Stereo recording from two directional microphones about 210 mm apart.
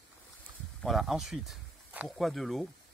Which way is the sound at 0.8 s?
Centre (ahead or behind).